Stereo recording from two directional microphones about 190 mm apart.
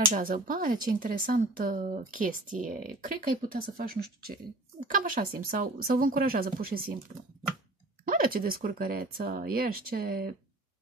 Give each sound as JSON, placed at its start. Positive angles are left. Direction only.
{"t": 0.0, "sound": "speech", "side_deg": -45}
{"t": 8.0, "sound": "speech", "side_deg": -50}